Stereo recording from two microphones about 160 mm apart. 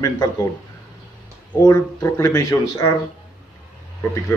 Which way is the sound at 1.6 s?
15° left (ahead or behind).